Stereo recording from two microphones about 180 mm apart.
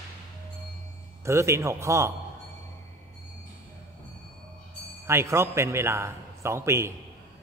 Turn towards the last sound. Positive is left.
turn(degrees=-15)  # may be behind; listen again after turning